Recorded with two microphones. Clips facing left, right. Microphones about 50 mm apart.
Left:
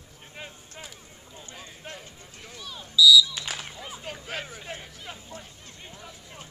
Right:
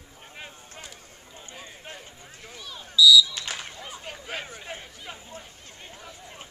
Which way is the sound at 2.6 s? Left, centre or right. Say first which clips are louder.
Even; centre.